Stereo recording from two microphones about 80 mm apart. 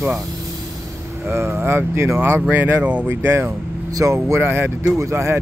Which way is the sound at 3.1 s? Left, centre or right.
Right.